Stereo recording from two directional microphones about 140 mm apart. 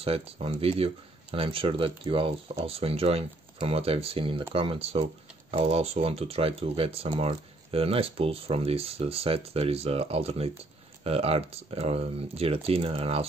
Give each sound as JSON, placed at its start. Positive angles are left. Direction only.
{"t": 0.0, "sound": "speech", "side_deg": -45}